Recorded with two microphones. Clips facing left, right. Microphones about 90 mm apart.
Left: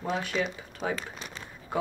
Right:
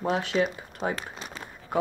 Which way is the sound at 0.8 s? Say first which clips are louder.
Right 2 dB; 15° right (ahead or behind).